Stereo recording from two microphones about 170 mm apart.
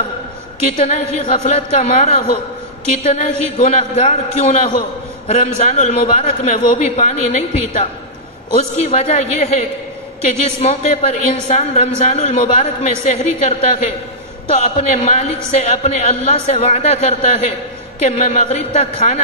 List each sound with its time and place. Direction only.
0.7 s a man's voice: 40° left (ahead or behind)